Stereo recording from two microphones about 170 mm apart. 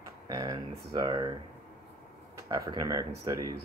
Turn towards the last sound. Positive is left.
turn(degrees=-20)  # may be behind; listen again after turning